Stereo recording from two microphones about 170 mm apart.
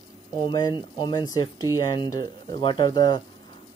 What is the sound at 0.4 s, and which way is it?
Speech, 25° left (ahead or behind).